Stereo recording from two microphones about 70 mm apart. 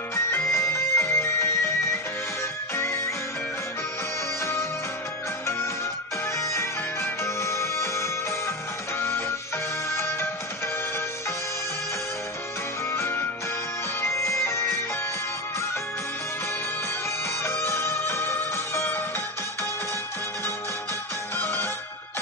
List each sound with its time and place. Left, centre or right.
0.1 s music: left
2.7 s music: left
6.3 s music: left
9.8 s music: left
12.9 s music: left
17.4 s music: left
21.4 s music: left